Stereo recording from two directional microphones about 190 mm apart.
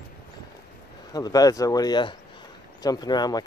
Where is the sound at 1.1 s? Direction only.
20° left (ahead or behind).